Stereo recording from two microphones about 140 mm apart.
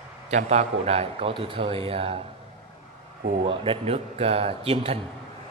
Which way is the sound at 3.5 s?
40° right (ahead or behind).